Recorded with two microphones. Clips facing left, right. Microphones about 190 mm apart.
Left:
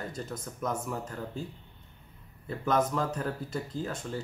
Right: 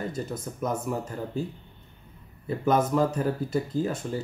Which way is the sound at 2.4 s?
10° right (ahead or behind).